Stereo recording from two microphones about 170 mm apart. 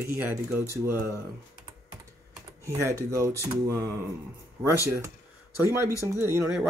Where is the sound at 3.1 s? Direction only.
20° right (ahead or behind).